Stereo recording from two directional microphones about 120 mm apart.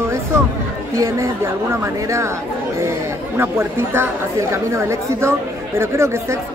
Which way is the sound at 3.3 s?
20° right (ahead or behind).